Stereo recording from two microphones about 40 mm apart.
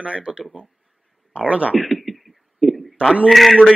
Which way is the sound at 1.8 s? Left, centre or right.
Centre.